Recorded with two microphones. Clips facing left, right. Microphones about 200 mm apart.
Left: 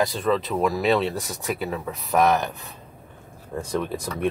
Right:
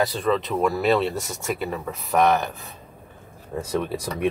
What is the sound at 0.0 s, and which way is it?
Speech, centre (ahead or behind).